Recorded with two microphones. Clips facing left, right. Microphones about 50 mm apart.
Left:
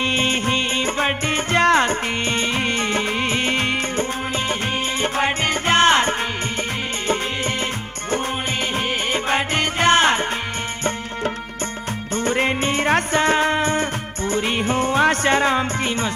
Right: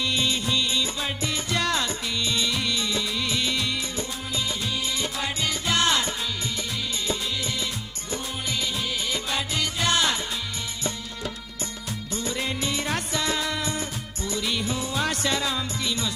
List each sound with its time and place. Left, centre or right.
0.0 s music: left
5.0 s music: left
9.1 s music: left
12.2 s music: left